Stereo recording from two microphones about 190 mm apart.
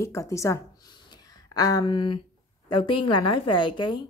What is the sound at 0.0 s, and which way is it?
A woman's voice, 15° left (ahead or behind).